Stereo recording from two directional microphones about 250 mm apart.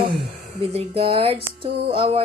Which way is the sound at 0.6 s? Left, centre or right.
Right.